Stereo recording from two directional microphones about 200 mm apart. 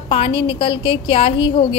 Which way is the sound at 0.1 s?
25° left (ahead or behind).